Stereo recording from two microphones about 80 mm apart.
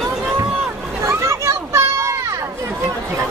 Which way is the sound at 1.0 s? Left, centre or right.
Right.